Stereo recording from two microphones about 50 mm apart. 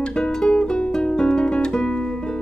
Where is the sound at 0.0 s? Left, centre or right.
Centre.